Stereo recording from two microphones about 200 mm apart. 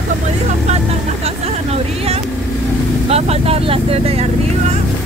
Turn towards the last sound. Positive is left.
turn(degrees=-30)  # may be behind; listen again after turning